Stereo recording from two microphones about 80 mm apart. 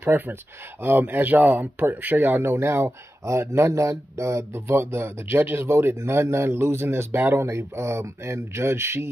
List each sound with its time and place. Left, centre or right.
0.0 s speech: right